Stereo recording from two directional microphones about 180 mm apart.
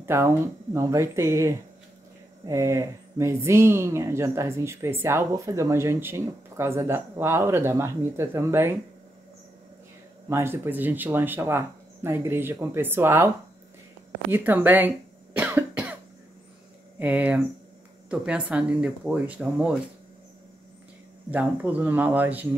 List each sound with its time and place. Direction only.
0.0 s speech: 15° right (ahead or behind)
10.3 s speech: 15° right (ahead or behind)
14.3 s cough: 10° right (ahead or behind)
17.0 s speech: 10° right (ahead or behind)
21.3 s speech: 10° right (ahead or behind)